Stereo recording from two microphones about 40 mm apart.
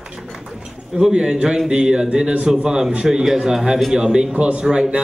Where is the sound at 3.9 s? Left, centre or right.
Right.